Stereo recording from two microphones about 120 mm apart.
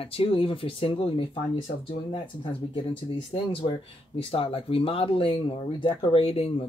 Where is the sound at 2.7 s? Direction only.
45° left (ahead or behind).